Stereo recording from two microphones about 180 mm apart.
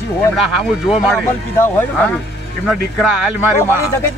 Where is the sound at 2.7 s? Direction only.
5° right (ahead or behind).